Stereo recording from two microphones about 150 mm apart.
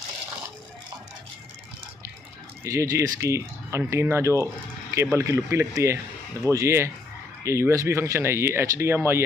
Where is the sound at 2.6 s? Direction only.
20° right (ahead or behind).